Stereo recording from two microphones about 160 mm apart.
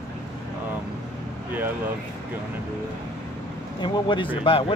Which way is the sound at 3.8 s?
30° left (ahead or behind).